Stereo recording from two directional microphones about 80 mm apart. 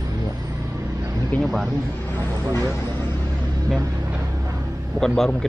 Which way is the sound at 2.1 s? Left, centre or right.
Right.